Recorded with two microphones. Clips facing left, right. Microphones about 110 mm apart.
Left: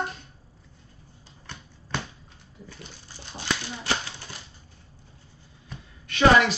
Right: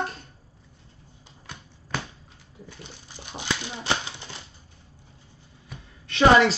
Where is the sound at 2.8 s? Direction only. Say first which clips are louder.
Right 1 dB; 20° right (ahead or behind).